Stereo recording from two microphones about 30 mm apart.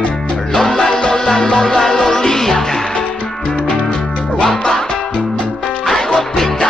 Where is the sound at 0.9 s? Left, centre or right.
Left.